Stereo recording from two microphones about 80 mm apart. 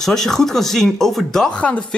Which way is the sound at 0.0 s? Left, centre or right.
Centre.